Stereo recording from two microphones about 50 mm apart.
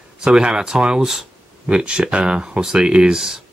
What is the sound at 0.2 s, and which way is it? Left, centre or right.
Speech, centre.